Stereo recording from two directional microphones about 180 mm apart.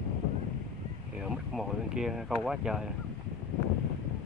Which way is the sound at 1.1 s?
Centre (ahead or behind).